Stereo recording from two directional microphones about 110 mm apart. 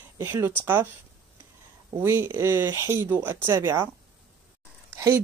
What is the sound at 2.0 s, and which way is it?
Speech, 25° right (ahead or behind).